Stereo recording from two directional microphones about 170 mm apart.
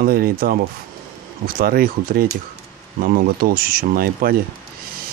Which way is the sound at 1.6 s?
60° right (ahead or behind).